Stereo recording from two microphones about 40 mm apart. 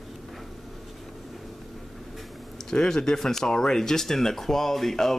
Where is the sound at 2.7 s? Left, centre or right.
Centre.